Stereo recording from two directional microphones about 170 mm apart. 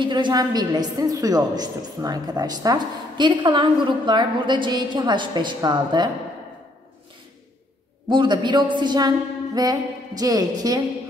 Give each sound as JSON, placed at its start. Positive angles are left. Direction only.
{"t": 0.0, "sound": "a woman's voice", "side_deg": -25}
{"t": 8.1, "sound": "a woman's voice", "side_deg": -25}